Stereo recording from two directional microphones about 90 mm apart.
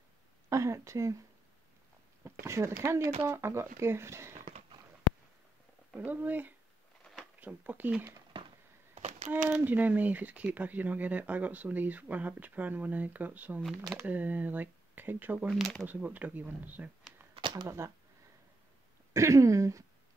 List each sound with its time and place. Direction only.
0.5 s speech: 35° right (ahead or behind)
2.2 s speech: 30° right (ahead or behind)
5.9 s speech: 20° right (ahead or behind)
8.3 s fireworks: 70° right (ahead or behind)
9.3 s speech: 20° right (ahead or behind)
17.3 s a sound: 60° right (ahead or behind)
17.6 s speech: 30° right (ahead or behind)
19.1 s speech: 35° right (ahead or behind)